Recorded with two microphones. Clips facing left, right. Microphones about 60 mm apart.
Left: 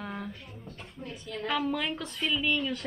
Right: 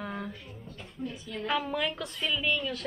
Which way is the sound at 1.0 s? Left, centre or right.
Centre.